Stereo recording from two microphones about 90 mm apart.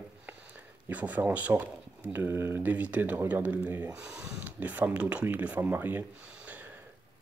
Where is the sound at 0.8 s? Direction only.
20° right (ahead or behind).